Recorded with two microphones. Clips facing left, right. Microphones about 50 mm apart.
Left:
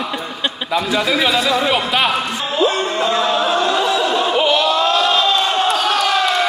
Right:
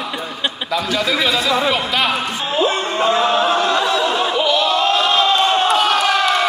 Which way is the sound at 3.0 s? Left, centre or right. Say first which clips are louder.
Right 3 dB; right.